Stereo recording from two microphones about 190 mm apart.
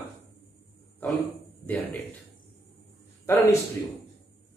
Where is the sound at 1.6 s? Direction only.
10° left (ahead or behind).